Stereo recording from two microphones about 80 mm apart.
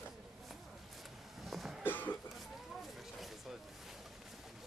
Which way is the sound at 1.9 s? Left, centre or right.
Left.